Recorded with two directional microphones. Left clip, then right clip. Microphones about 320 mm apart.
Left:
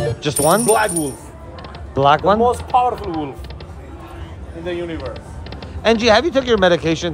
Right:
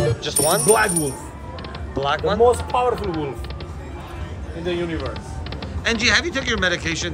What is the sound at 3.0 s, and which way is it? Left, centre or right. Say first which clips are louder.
Speech: left 1 dB; centre.